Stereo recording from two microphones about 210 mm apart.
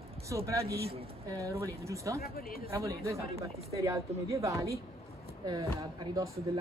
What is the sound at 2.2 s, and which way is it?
Speech, 45° left (ahead or behind).